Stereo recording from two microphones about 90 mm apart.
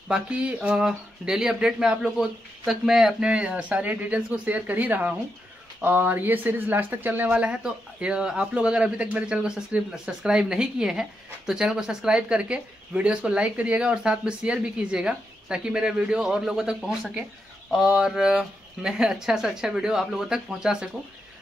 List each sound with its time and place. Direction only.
0.1 s speech: 10° right (ahead or behind)